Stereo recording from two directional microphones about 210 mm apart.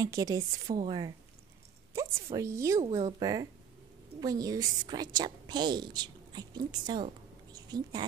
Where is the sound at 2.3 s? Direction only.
15° right (ahead or behind).